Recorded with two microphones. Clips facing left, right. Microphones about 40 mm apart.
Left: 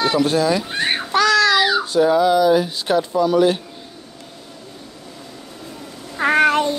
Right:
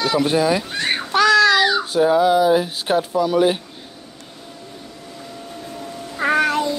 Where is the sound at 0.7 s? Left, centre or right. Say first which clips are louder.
Left 1 dB; centre.